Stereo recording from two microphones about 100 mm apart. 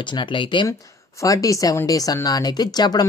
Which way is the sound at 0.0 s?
55° left (ahead or behind).